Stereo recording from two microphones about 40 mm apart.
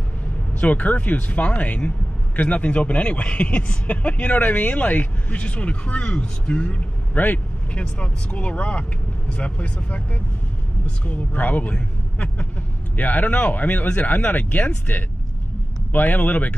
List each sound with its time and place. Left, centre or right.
0.6 s a man's voice: left
7.2 s speech: left
7.7 s a man's voice: left
12.9 s speech: left